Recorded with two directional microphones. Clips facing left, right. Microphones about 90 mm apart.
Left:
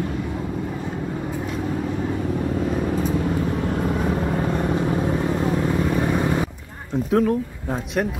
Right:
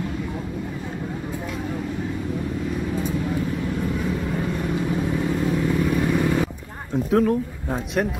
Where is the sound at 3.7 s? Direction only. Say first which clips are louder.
Left 3 dB; 45° left (ahead or behind); by 6.5 s 20° left (ahead or behind).